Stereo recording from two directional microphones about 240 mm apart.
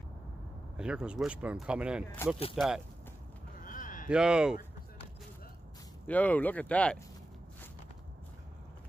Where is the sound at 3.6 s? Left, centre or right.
Left.